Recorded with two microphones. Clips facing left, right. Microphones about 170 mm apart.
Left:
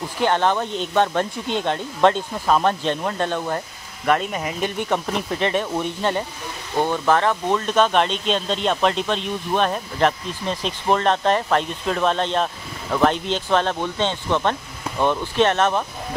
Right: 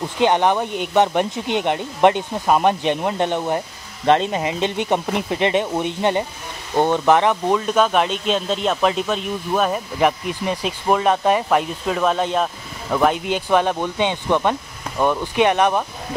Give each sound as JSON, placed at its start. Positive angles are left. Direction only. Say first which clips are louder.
{"t": 0.2, "sound": "speech", "louder": "right 3 dB", "side_deg": -15}